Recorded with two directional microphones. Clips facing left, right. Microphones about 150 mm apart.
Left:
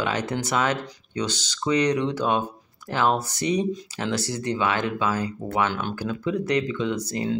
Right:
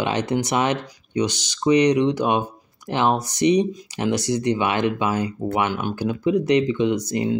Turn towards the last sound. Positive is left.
turn(degrees=-20)  # may be behind; listen again after turning